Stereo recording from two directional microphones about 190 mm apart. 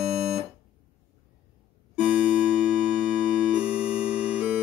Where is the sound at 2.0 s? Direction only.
5° right (ahead or behind).